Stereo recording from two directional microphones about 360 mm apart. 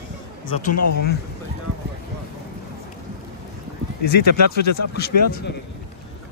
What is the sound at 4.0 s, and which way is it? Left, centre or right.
Speech, left.